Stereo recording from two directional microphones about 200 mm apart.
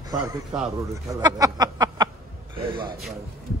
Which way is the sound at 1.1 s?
20° right (ahead or behind).